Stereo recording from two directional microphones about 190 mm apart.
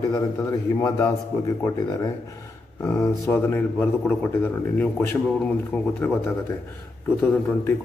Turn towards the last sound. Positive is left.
turn(degrees=10)  # may be behind; listen again after turning